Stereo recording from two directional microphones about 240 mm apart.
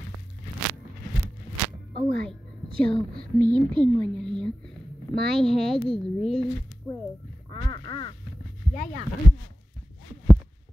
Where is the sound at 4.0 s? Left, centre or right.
Centre.